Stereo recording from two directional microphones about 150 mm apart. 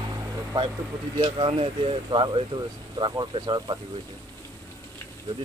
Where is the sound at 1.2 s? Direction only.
40° right (ahead or behind).